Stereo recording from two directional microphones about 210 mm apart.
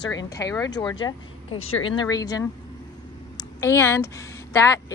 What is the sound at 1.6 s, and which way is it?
Speech, 80° left.